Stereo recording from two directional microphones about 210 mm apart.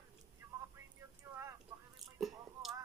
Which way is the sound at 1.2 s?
15° right (ahead or behind).